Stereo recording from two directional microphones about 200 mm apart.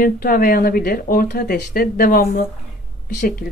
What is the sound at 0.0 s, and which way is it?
Speech, 45° left (ahead or behind).